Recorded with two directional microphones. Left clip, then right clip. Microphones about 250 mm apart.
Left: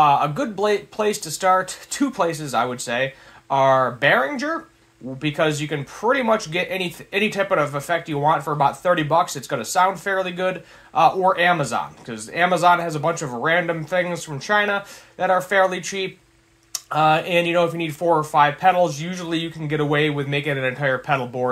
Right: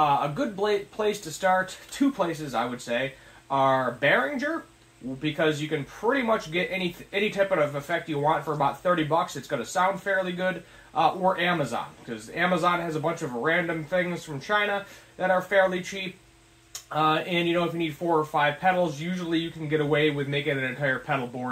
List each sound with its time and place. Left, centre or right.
0.0 s speech: left